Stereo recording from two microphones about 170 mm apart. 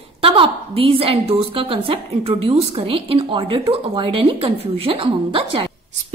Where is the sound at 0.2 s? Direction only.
35° right (ahead or behind).